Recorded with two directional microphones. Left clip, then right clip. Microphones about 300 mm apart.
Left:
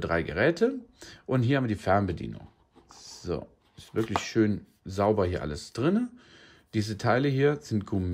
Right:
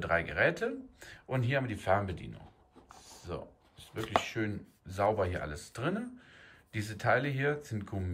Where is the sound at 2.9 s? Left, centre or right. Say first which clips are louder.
Left 8 dB; centre.